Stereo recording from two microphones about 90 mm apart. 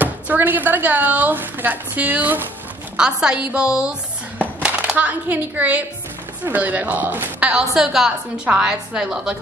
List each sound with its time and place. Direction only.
0.0 s speech: 20° right (ahead or behind)
3.0 s a woman's voice: 10° right (ahead or behind)